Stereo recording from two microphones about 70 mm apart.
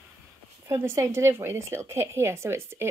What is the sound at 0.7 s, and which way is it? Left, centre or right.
A woman's voice, right.